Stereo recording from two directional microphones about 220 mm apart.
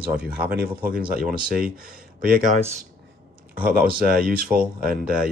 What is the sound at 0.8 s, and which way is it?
Speech, 40° right (ahead or behind).